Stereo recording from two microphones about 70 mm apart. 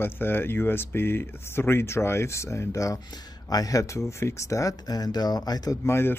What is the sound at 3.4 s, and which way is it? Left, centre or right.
Speech, left.